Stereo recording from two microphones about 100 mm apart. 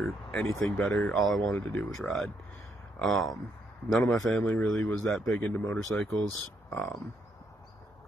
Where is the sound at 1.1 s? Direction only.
Centre (ahead or behind).